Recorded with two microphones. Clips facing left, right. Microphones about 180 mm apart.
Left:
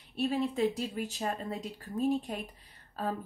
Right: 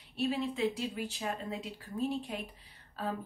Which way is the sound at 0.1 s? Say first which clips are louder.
Left 2 dB; 40° left (ahead or behind).